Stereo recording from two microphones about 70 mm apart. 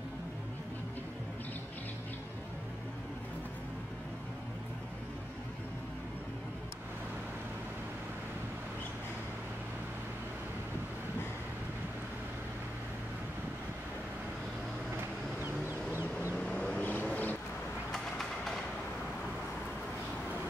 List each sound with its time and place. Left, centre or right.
15.0 s vehicle: right
16.3 s vehicle: centre
17.9 s vehicle: centre